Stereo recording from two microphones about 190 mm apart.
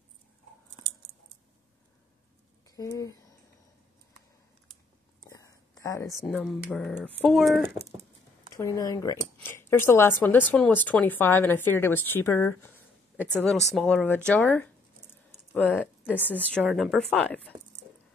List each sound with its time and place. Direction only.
2.7 s speech: 20° left (ahead or behind)
5.2 s a sound: 20° left (ahead or behind)
6.2 s speech: centre (ahead or behind)
8.5 s speech: 15° left (ahead or behind)